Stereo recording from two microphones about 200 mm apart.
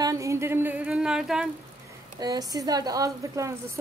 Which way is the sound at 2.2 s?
20° right (ahead or behind).